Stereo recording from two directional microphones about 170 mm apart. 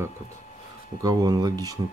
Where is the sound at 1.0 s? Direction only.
20° right (ahead or behind).